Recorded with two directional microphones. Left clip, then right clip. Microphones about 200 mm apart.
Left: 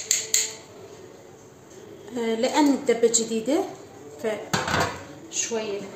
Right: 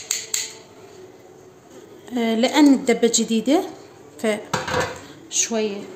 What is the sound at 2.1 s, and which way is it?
A woman's voice, 40° right (ahead or behind).